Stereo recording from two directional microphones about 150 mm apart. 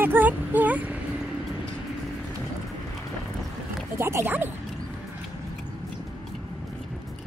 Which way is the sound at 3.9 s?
15° right (ahead or behind).